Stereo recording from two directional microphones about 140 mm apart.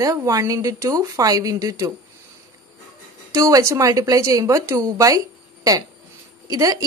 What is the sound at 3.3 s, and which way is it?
A woman's voice, 20° right (ahead or behind).